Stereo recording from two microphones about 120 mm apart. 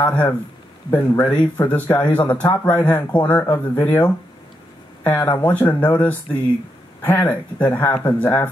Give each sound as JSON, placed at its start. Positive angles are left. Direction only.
{"t": 0.0, "sound": "speech", "side_deg": 15}
{"t": 5.3, "sound": "speech", "side_deg": 15}